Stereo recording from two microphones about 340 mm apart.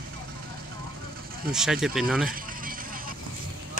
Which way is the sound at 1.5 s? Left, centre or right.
Centre.